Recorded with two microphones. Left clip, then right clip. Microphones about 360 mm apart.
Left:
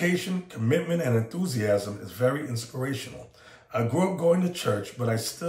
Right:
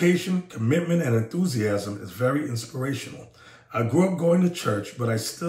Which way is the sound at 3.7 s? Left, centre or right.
Centre.